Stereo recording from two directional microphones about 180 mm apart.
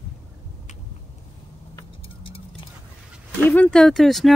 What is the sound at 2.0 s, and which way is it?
Music, 30° left (ahead or behind).